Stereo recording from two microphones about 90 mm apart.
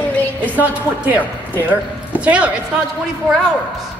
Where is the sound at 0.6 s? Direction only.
20° right (ahead or behind).